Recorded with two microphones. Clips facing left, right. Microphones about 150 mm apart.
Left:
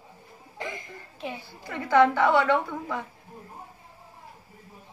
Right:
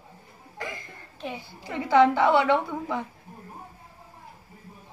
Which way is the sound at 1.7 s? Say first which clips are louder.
Right 1 dB; 15° right (ahead or behind).